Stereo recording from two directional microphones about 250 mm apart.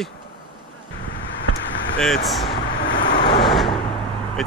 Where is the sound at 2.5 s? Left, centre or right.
Centre.